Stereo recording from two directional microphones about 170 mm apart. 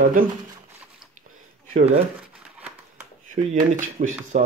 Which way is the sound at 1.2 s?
45° right (ahead or behind).